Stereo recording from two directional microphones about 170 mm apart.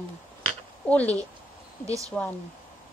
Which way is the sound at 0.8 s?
10° left (ahead or behind).